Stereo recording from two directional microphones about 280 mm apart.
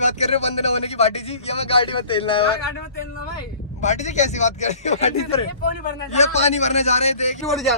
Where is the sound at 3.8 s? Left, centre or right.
Left.